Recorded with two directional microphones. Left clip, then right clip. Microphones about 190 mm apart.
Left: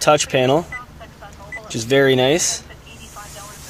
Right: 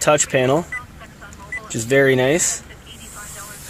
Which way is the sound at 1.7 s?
5° right (ahead or behind).